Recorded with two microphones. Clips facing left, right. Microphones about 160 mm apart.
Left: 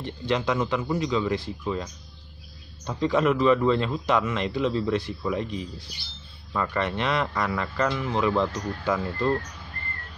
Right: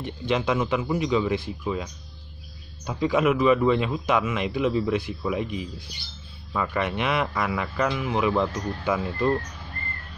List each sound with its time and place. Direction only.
0.0 s a man's voice: 15° right (ahead or behind)
1.6 s speech: 5° right (ahead or behind)
2.9 s a man's voice: 10° right (ahead or behind)